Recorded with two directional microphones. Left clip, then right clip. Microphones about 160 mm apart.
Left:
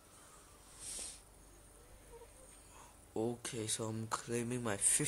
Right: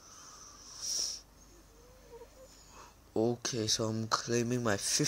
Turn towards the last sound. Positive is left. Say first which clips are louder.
# right 6 dB
turn(degrees=-20)  # may be behind; listen again after turning